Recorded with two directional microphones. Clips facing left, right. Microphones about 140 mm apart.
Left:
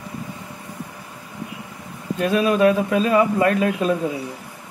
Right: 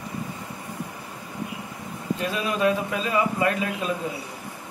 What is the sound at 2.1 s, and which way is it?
A man's voice, 55° left (ahead or behind).